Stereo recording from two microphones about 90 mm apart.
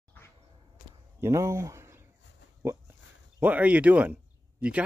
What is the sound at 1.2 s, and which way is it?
Speech, 35° right (ahead or behind).